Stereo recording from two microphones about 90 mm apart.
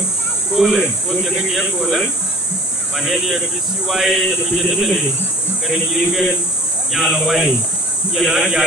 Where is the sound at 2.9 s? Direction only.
Centre (ahead or behind).